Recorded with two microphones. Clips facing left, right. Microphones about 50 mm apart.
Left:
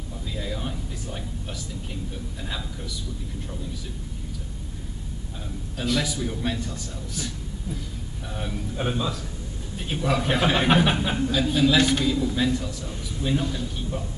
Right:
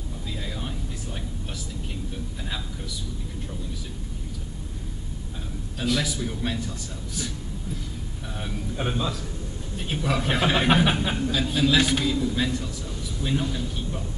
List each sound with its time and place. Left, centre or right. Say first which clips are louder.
0.4 s a sound: left 5 dB; centre
5.8 s a man's voice: even; centre
8.4 s a man's voice: left 1 dB; centre